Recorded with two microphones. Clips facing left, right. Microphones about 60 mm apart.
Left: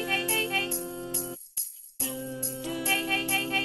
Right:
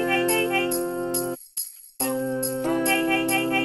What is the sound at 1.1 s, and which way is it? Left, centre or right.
Music, right.